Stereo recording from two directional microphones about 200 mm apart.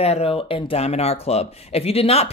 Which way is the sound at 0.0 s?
30° left (ahead or behind).